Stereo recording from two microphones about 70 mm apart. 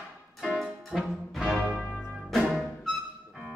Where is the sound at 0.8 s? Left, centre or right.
Centre.